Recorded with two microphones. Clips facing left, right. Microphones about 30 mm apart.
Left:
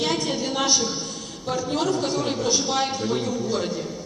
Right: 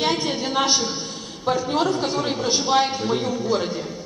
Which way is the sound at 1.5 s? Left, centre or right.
Right.